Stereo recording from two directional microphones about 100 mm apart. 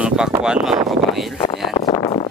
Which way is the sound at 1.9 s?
50° left (ahead or behind).